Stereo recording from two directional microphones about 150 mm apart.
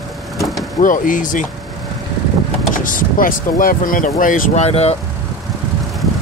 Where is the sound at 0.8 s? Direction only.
60° left (ahead or behind).